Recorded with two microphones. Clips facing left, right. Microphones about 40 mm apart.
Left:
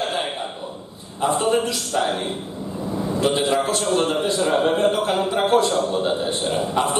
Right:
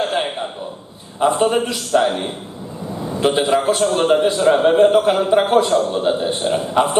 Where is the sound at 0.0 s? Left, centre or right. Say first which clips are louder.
Right 4 dB; centre.